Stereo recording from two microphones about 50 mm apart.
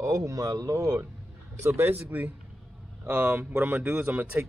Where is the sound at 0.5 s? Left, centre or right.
Right.